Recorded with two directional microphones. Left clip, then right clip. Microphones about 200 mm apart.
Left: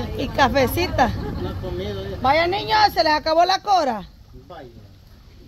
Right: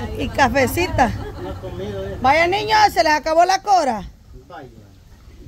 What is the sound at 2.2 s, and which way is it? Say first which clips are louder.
Speech: right 3 dB; 20° right (ahead or behind).